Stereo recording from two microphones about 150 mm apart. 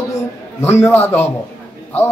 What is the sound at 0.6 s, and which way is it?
Speech, 15° left (ahead or behind).